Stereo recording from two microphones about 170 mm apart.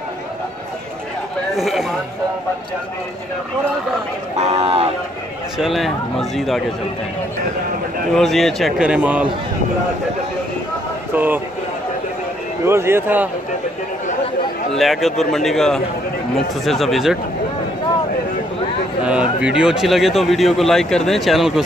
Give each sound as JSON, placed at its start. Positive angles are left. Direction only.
{"t": 1.6, "sound": "speech", "side_deg": 0}
{"t": 4.4, "sound": "speech", "side_deg": -35}
{"t": 5.6, "sound": "speech", "side_deg": 0}
{"t": 8.1, "sound": "speech", "side_deg": 0}
{"t": 11.1, "sound": "speech", "side_deg": -10}
{"t": 12.6, "sound": "speech", "side_deg": -15}
{"t": 14.8, "sound": "speech", "side_deg": 0}
{"t": 19.0, "sound": "speech", "side_deg": -5}